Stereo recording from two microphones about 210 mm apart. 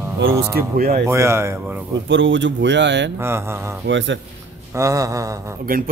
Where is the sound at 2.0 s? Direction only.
60° right (ahead or behind).